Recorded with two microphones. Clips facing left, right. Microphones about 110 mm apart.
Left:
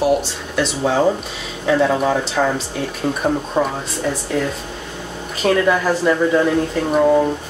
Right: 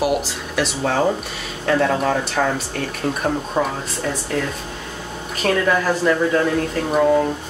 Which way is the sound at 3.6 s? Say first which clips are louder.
Left 2 dB; centre (ahead or behind).